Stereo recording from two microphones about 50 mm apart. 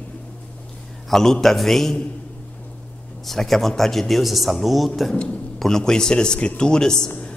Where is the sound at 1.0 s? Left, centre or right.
Centre.